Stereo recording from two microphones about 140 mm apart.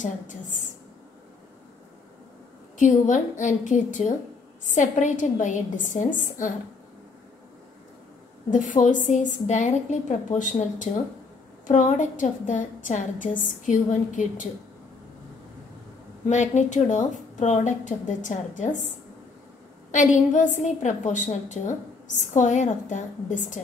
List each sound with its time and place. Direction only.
0.0 s a woman's voice: 65° left (ahead or behind)
2.8 s a woman's voice: 60° left (ahead or behind)
8.5 s a woman's voice: 65° left (ahead or behind)
16.3 s a woman's voice: 60° left (ahead or behind)
19.9 s a woman's voice: 65° left (ahead or behind)